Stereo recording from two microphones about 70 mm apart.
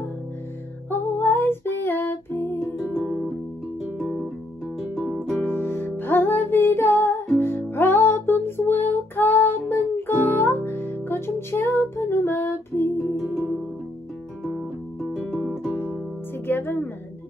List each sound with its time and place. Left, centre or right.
0.8 s music: left
2.8 s music: centre
4.9 s music: centre
5.5 s music: left
13.1 s music: centre
15.3 s music: centre
16.4 s music: left